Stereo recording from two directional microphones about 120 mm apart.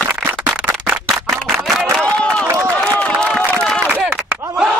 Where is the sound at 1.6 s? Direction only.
Centre (ahead or behind).